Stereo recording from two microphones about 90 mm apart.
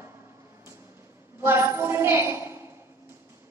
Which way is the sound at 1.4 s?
25° right (ahead or behind).